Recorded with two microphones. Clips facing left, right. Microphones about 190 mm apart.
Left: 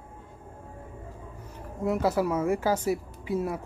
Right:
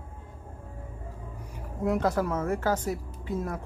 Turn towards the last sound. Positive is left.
turn(degrees=10)  # may be behind; listen again after turning